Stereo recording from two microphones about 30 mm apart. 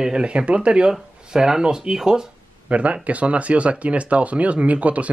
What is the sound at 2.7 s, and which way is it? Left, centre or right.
Speech, right.